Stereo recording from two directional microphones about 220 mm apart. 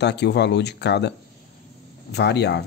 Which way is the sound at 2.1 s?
50° left (ahead or behind).